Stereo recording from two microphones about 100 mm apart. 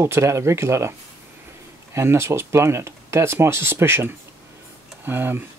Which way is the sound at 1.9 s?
25° right (ahead or behind).